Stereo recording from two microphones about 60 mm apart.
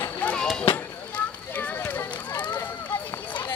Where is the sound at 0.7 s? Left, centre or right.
Left.